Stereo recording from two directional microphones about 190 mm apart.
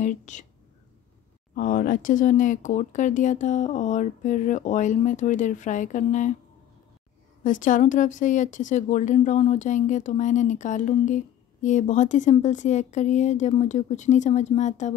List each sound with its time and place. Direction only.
0.0 s speech: 40° left (ahead or behind)
1.5 s speech: 50° left (ahead or behind)
7.4 s speech: 45° left (ahead or behind)